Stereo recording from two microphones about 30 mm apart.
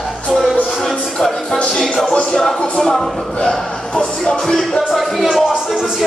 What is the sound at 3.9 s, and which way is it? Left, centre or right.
Music, left.